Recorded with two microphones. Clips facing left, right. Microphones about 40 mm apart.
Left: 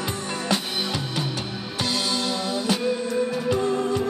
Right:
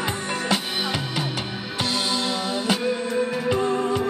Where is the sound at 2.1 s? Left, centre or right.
Right.